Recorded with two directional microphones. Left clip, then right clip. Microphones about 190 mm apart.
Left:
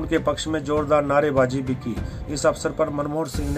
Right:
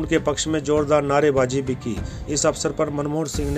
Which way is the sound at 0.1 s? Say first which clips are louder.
Right 1 dB; 35° right (ahead or behind).